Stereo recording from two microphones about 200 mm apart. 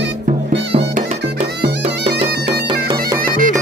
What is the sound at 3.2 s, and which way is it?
Bagpipes, 45° right (ahead or behind).